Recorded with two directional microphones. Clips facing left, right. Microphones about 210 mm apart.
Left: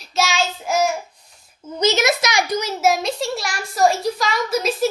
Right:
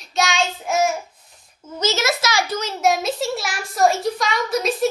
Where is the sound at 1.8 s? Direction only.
15° left (ahead or behind).